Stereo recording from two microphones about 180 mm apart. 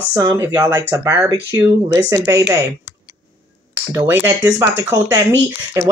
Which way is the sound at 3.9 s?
15° right (ahead or behind).